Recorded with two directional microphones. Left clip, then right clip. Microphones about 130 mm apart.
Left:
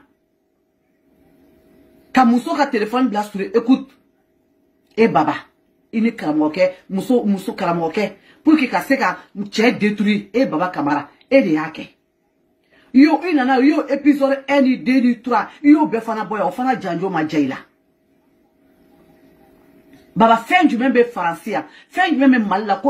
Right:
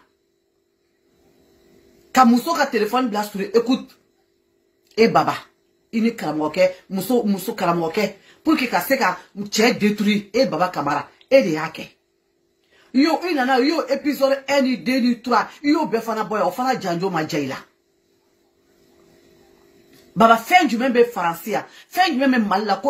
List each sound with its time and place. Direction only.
2.1 s speech: 30° right (ahead or behind)
4.9 s speech: 30° right (ahead or behind)
20.2 s speech: 30° right (ahead or behind)